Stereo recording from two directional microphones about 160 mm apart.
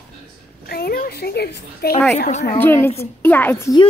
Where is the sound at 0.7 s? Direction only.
70° left (ahead or behind).